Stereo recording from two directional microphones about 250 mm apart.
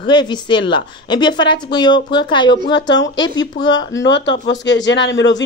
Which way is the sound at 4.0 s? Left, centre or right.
Left.